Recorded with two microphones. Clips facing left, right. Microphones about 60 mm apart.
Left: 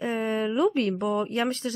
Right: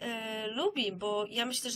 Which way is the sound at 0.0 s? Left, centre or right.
Left.